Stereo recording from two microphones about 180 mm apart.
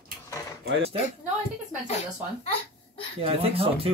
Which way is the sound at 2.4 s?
30° left (ahead or behind).